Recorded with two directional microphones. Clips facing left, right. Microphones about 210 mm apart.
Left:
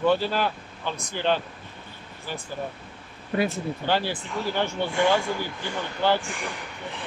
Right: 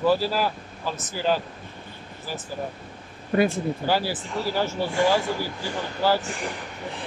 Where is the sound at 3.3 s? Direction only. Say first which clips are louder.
Right 4 dB; 50° right (ahead or behind).